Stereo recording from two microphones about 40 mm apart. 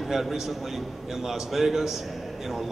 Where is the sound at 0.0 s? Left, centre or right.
Centre.